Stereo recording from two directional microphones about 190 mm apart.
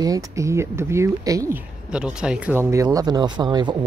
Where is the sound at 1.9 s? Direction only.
5° right (ahead or behind).